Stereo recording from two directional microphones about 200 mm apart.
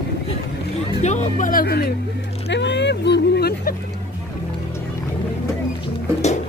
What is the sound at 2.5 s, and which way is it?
Vehicle, 60° left (ahead or behind).